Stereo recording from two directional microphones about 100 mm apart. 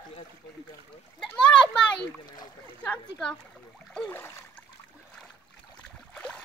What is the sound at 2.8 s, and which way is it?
Speech, 10° left (ahead or behind).